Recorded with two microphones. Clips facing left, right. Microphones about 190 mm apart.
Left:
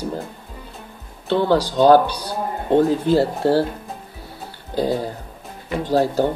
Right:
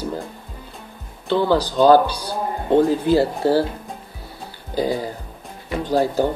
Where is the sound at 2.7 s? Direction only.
5° right (ahead or behind).